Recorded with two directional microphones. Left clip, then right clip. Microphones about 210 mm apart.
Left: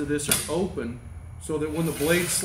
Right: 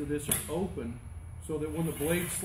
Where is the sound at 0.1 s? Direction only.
10° left (ahead or behind).